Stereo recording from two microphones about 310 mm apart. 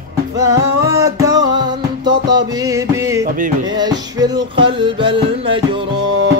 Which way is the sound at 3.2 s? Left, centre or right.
Right.